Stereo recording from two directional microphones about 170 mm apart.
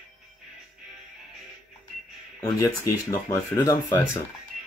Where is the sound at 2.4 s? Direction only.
15° left (ahead or behind).